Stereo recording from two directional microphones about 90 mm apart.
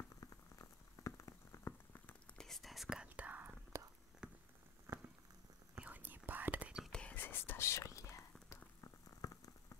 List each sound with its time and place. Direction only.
0.2 s boiling: 40° left (ahead or behind)
2.3 s whispering: 5° left (ahead or behind); by 3.5 s 20° right (ahead or behind)
3.7 s whispering: 35° right (ahead or behind)
4.2 s rain on surface: 10° right (ahead or behind)
4.9 s a sound: 35° right (ahead or behind)
5.8 s whispering: 20° right (ahead or behind)
6.8 s whispering: 10° left (ahead or behind)
7.2 s whispering: 20° left (ahead or behind)